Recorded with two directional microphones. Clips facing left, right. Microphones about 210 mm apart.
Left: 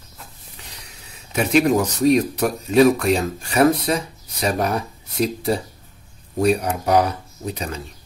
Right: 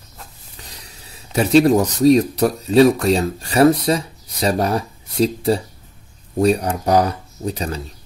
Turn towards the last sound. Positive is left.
turn(degrees=-35)  # may be behind; listen again after turning